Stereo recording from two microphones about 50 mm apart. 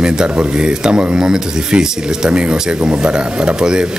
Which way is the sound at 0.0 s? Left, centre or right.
Centre.